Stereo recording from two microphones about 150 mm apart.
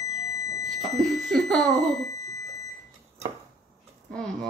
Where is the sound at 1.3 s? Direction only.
5° left (ahead or behind).